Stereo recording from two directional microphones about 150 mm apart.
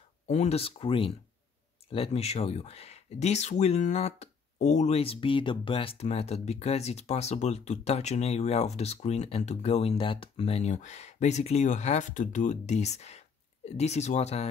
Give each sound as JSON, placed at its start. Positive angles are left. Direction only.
{"t": 0.3, "sound": "speech", "side_deg": 45}